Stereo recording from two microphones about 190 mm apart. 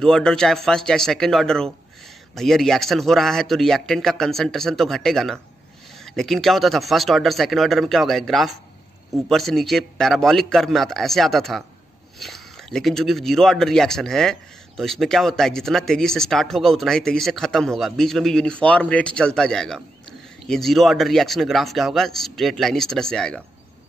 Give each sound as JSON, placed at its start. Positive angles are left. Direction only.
{"t": 0.0, "sound": "speech", "side_deg": 5}